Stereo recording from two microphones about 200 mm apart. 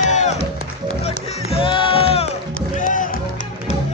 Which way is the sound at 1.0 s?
30° left (ahead or behind).